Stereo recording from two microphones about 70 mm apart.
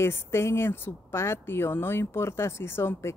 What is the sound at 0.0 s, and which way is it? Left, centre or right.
Speech, left.